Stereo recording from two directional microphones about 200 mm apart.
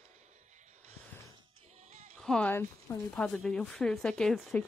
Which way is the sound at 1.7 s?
35° right (ahead or behind).